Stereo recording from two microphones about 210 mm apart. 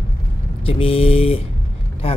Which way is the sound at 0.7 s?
25° left (ahead or behind).